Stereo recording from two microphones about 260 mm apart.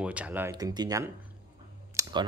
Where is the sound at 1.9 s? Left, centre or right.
Centre.